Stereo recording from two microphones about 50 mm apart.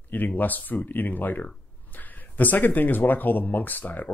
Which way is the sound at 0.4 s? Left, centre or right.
Left.